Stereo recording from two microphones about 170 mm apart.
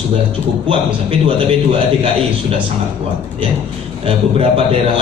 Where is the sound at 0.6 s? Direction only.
30° right (ahead or behind).